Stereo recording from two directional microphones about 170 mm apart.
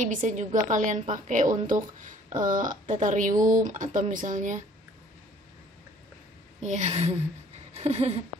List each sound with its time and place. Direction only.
0.0 s speech: 50° right (ahead or behind)
6.6 s a woman's voice: 45° right (ahead or behind)
7.7 s a sound: 40° right (ahead or behind)